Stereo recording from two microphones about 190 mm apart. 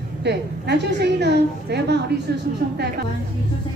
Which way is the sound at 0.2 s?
65° right (ahead or behind).